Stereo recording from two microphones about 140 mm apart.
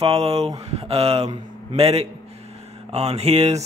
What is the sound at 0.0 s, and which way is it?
Speech, 45° right (ahead or behind).